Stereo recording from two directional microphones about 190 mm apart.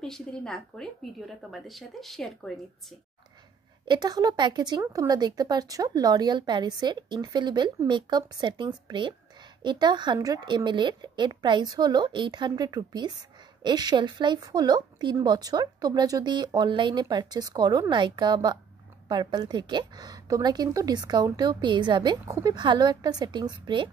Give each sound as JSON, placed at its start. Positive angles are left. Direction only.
{"t": 0.0, "sound": "speech", "side_deg": 5}
{"t": 3.8, "sound": "speech", "side_deg": -20}